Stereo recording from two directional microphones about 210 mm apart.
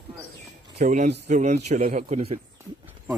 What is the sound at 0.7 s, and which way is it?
Speech, 35° right (ahead or behind).